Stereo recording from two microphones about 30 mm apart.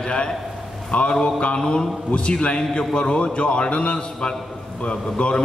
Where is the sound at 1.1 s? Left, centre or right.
Left.